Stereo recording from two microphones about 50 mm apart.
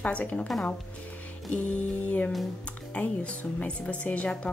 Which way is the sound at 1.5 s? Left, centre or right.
Left.